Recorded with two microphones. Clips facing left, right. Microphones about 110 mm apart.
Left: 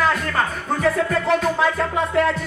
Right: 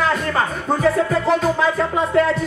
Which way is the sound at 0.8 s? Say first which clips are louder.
Right 2 dB; centre (ahead or behind).